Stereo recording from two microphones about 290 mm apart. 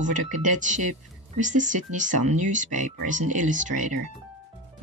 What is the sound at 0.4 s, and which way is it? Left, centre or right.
Speech, right.